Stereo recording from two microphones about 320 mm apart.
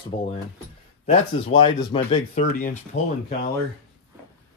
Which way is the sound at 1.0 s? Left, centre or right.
Centre.